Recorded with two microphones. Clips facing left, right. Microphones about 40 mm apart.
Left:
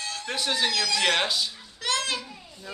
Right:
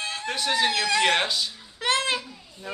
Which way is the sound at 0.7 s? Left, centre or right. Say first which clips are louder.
Right 3 dB; right.